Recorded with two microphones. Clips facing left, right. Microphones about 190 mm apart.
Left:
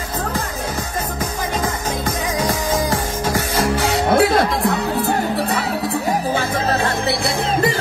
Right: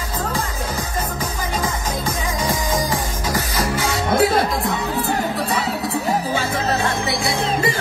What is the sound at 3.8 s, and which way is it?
Music, 60° left (ahead or behind).